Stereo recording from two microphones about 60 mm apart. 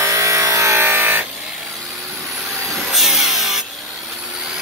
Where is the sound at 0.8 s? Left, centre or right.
Right.